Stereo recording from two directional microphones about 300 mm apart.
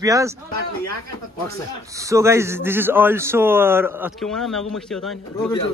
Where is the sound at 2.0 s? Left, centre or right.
Centre.